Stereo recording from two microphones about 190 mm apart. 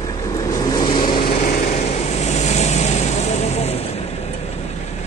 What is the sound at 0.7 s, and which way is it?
Vehicle, 25° left (ahead or behind).